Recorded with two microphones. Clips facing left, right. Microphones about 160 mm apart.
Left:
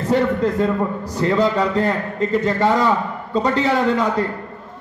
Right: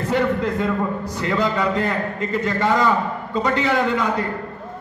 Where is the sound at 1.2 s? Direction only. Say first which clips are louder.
Left 4 dB; 35° left (ahead or behind).